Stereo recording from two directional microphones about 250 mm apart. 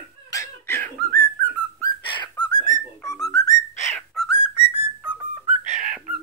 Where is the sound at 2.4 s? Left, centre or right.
Centre.